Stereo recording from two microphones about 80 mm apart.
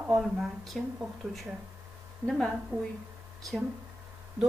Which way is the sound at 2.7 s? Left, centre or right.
Right.